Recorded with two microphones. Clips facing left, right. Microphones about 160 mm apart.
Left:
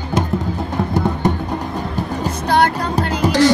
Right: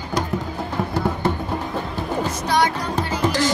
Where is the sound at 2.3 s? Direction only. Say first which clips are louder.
Left 6 dB; 60° left (ahead or behind).